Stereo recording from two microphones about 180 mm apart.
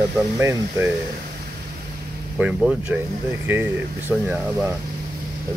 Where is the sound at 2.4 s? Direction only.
5° right (ahead or behind).